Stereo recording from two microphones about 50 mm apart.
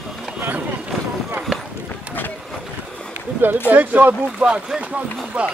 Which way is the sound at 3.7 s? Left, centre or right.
Right.